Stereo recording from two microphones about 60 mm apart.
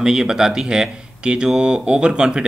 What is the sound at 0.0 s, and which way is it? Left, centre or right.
Speech, centre.